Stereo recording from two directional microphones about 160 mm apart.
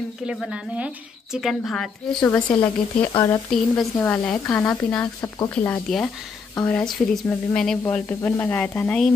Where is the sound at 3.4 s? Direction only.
5° left (ahead or behind).